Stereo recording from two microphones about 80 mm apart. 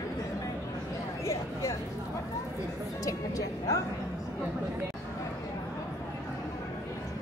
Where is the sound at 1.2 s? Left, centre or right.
Left.